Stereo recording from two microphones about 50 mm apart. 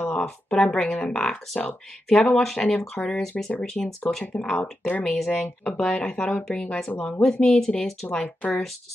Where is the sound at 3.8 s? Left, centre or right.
Left.